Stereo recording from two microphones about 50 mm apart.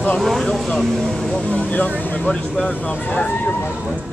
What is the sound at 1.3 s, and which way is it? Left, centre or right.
Speech, left.